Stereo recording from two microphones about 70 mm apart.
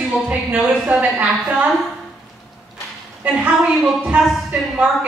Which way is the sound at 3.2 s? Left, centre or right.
Centre.